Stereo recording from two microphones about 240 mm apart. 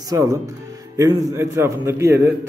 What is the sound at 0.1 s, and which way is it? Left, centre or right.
A man's voice, centre.